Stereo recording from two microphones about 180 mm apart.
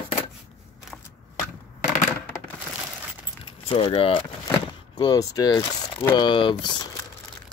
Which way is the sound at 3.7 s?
30° left (ahead or behind).